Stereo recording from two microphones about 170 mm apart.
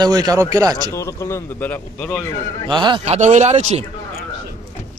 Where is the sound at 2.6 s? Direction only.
30° right (ahead or behind).